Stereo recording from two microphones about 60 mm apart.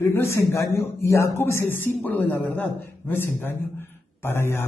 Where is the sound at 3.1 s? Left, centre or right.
Left.